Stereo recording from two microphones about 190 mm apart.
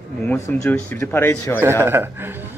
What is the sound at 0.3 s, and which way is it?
Speech, 10° left (ahead or behind).